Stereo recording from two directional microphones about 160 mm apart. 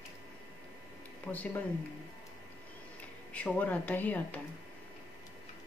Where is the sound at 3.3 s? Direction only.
10° left (ahead or behind).